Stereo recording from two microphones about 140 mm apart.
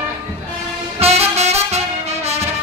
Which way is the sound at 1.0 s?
50° right (ahead or behind).